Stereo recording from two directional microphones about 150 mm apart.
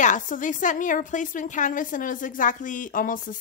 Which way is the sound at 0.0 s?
55° left (ahead or behind).